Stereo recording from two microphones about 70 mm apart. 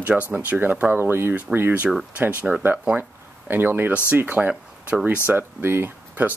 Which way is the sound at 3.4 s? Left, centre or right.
Right.